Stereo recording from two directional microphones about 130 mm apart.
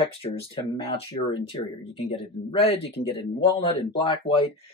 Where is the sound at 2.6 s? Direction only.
50° left (ahead or behind).